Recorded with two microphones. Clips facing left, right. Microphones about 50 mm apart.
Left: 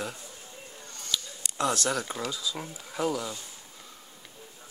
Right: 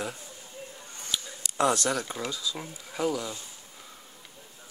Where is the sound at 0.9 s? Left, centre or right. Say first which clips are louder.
Left 1 dB; centre.